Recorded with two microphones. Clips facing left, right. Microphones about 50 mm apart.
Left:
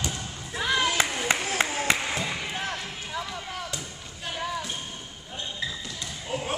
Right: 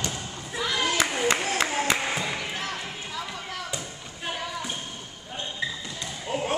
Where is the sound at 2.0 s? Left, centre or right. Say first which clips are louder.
Right 1 dB; centre.